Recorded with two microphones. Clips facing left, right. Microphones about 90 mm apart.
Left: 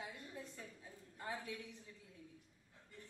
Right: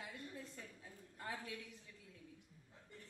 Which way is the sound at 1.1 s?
20° left (ahead or behind).